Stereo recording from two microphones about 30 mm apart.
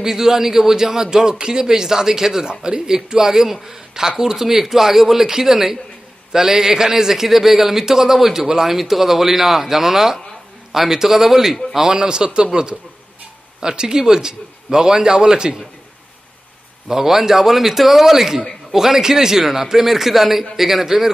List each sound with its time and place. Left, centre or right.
0.0 s a man's voice: centre
11.9 s a man's voice: right
16.8 s a man's voice: centre